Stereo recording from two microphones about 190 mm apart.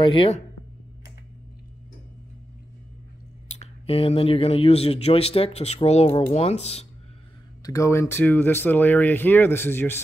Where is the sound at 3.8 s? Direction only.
30° left (ahead or behind).